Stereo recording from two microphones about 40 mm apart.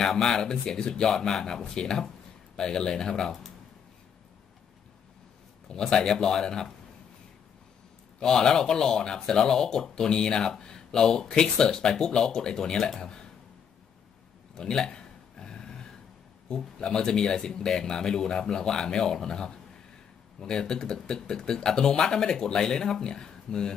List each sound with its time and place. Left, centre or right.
0.0 s speech: centre
5.7 s speech: centre
8.2 s speech: centre
14.5 s a sound: centre
16.4 s speech: centre